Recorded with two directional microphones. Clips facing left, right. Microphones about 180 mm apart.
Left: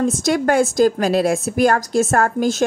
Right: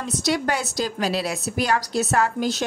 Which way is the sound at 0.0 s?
50° left (ahead or behind).